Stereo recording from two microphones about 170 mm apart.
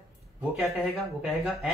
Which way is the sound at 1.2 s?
5° right (ahead or behind).